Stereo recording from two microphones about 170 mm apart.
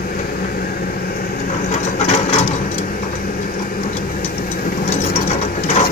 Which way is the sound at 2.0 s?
40° left (ahead or behind).